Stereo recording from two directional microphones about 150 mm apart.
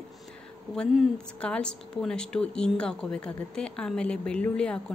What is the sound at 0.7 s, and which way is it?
Speech, 5° left (ahead or behind).